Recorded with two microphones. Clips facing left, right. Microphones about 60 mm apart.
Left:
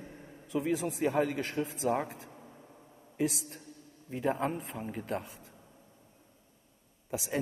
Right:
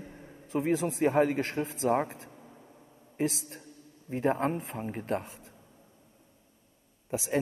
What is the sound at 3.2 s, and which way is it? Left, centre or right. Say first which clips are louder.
A woman's voice: right 1 dB; right.